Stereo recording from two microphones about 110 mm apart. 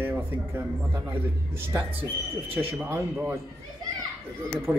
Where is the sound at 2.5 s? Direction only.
20° right (ahead or behind).